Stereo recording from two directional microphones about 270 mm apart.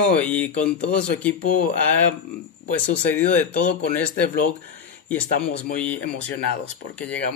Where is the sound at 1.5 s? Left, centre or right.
Left.